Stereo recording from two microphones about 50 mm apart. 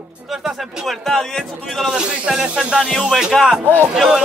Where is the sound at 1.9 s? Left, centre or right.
Centre.